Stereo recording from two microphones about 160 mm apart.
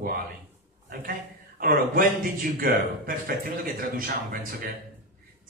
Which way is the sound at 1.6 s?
65° right (ahead or behind).